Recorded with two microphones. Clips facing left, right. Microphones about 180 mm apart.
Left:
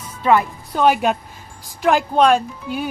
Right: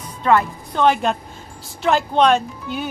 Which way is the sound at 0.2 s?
10° left (ahead or behind).